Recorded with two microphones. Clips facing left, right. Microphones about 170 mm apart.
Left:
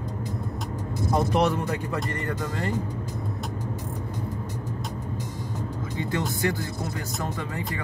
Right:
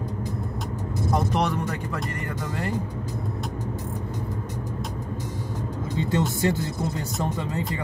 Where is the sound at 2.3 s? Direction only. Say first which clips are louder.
Left 1 dB; 10° right (ahead or behind).